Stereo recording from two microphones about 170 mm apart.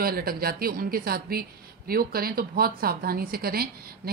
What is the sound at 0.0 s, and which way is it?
Speech, 60° right (ahead or behind).